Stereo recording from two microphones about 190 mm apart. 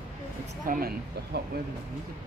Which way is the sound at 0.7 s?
50° right (ahead or behind).